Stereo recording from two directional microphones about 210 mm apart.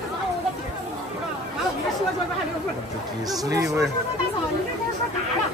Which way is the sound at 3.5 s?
15° right (ahead or behind).